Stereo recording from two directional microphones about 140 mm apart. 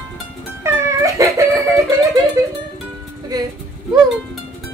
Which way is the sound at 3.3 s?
25° right (ahead or behind).